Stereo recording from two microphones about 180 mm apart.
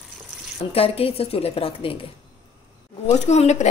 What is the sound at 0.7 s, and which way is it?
Speech, 35° left (ahead or behind).